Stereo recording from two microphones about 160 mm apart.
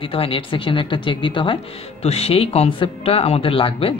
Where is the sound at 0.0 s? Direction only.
35° left (ahead or behind).